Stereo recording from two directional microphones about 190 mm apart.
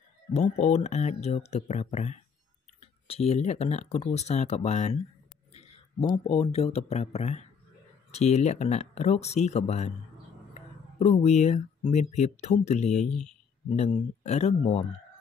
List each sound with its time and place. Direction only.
0.3 s speech: 35° left (ahead or behind)
6.2 s speech: 35° left (ahead or behind)